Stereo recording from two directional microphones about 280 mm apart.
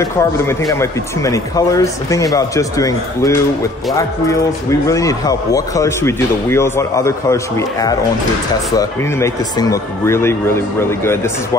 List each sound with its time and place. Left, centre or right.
0.0 s speech: centre